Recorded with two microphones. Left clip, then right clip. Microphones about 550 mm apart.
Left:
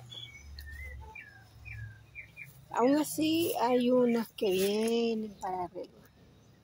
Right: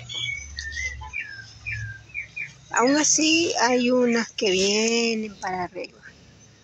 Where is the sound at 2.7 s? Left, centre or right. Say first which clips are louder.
Right 8 dB; left.